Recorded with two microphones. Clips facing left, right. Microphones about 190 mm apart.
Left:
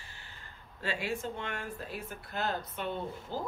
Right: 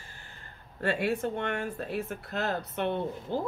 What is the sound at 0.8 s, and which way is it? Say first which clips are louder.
Speech: right 7 dB; 60° right (ahead or behind).